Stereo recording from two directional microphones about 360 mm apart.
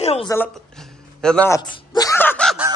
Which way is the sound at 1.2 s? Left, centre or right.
Centre.